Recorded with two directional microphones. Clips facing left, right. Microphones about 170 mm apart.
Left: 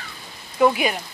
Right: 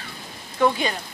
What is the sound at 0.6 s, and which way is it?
Speech, 15° left (ahead or behind).